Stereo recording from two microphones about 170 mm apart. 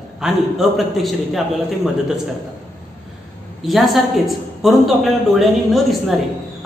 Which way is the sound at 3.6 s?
Centre (ahead or behind).